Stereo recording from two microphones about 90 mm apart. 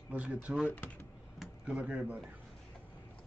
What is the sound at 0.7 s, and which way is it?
Speech, 20° left (ahead or behind).